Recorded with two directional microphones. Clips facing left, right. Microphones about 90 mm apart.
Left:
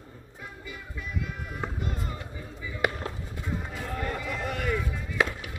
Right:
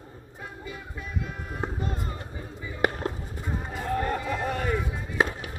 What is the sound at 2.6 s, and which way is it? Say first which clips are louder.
Chop: right 3 dB; 40° right (ahead or behind).